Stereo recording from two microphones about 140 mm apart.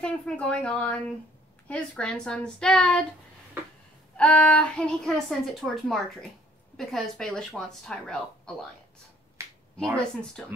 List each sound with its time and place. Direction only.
0.0 s speech: 5° left (ahead or behind)
4.2 s a woman's voice: 10° left (ahead or behind)
9.4 s finger snapping: 20° right (ahead or behind)
9.8 s a woman's voice: 5° left (ahead or behind)